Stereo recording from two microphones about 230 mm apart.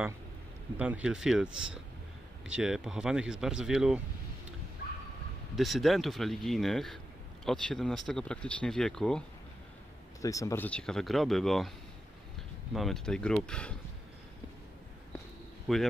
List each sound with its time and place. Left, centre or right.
0.7 s speech: centre
5.6 s speech: centre
10.2 s speech: centre
12.7 s speech: centre
15.7 s speech: centre